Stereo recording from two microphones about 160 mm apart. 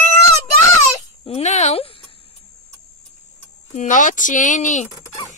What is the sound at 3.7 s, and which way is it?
A woman's voice, 50° left (ahead or behind).